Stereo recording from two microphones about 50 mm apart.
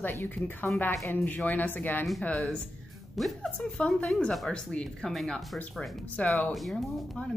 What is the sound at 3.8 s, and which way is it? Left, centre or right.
Speech, centre.